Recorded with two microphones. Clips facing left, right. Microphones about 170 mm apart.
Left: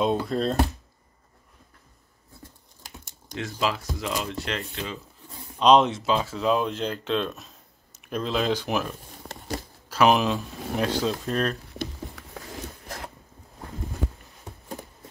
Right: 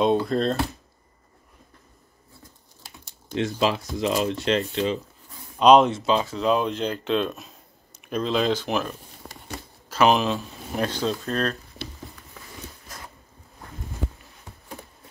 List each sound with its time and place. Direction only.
0.0 s speech: centre (ahead or behind)
3.3 s speech: 20° right (ahead or behind)
5.6 s speech: centre (ahead or behind); by 11.5 s 15° left (ahead or behind)
12.8 s a sound: 65° left (ahead or behind)